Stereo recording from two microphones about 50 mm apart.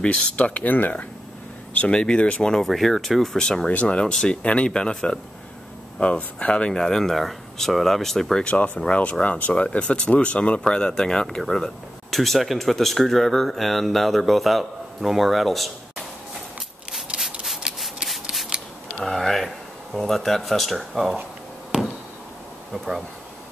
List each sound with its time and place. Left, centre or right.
0.0 s speech: left
1.9 s speech: centre
2.4 s speech: centre
8.5 s speech: left; by 15.7 s centre
17.1 s rub: right
18.5 s camera: centre
18.9 s speech: centre
22.7 s speech: centre